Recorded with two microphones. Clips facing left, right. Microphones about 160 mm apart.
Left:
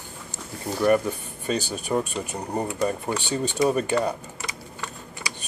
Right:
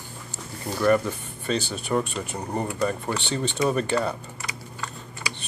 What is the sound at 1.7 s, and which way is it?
Speech, 15° left (ahead or behind).